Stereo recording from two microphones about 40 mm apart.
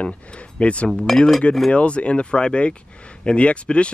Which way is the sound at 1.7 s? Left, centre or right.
Left.